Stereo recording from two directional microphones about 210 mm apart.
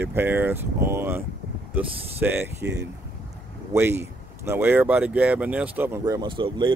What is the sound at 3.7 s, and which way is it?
Speech, 10° right (ahead or behind).